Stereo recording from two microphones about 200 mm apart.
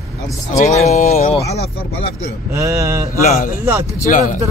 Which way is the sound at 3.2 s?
35° left (ahead or behind).